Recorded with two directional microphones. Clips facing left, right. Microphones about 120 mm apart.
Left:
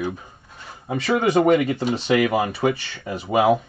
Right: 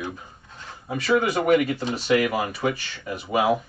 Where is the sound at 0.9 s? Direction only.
25° left (ahead or behind).